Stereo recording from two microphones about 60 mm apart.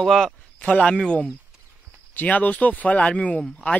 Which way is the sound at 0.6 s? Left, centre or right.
Centre.